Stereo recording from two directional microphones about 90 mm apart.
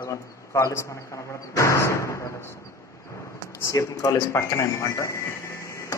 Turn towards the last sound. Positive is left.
turn(degrees=35)  # may be behind; listen again after turning